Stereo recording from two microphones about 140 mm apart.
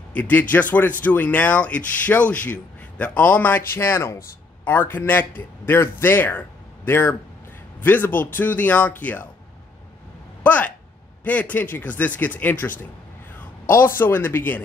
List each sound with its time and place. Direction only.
0.1 s speech: 10° left (ahead or behind)
10.4 s speech: 10° left (ahead or behind)
13.7 s speech: 15° left (ahead or behind)